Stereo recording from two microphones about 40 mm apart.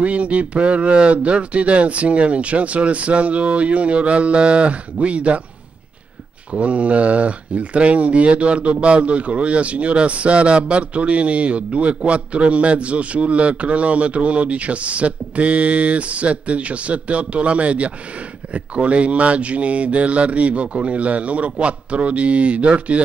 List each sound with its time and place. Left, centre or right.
0.0 s speech: right
6.5 s speech: right